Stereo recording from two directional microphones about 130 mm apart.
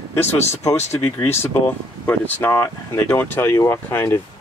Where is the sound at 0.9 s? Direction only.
20° left (ahead or behind).